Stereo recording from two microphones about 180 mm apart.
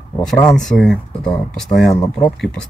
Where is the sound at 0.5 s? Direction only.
Centre (ahead or behind).